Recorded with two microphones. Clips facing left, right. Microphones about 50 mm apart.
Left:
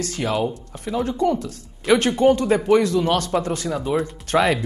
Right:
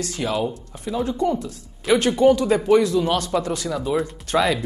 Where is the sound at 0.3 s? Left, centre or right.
Left.